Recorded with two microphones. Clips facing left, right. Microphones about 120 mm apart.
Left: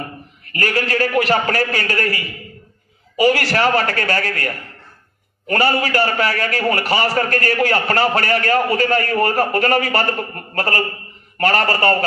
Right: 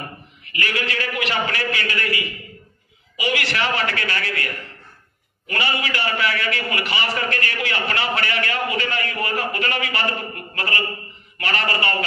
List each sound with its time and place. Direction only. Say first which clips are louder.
0.5 s a man's voice: left 6 dB; 40° left (ahead or behind)